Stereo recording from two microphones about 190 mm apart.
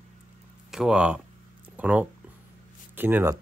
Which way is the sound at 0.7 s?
5° right (ahead or behind).